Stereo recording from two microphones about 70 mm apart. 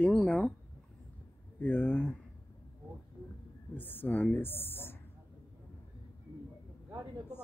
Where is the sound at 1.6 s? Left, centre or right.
Left.